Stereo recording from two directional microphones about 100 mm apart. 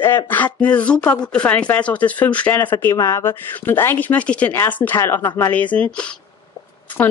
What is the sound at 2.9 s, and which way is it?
Speech, 30° left (ahead or behind).